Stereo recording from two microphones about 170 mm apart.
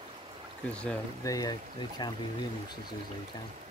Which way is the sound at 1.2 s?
20° left (ahead or behind).